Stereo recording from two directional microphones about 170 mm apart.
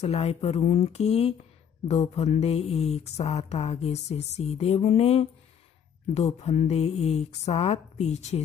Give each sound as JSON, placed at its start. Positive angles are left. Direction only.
{"t": 0.0, "sound": "speech", "side_deg": 35}